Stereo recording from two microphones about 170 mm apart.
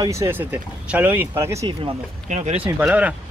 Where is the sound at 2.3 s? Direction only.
40° right (ahead or behind).